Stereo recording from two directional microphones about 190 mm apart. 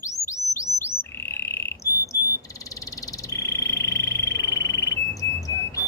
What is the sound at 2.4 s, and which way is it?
Frog, 15° left (ahead or behind).